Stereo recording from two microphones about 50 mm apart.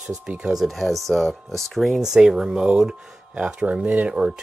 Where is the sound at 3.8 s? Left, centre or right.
Right.